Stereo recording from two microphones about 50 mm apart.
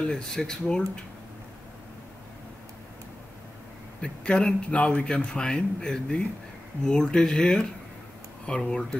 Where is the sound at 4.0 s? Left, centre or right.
Centre.